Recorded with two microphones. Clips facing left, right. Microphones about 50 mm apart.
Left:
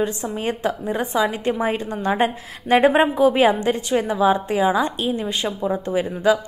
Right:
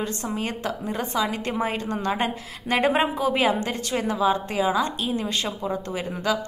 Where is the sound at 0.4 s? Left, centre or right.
Left.